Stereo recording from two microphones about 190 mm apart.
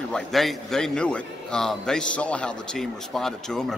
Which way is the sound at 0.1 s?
Centre (ahead or behind).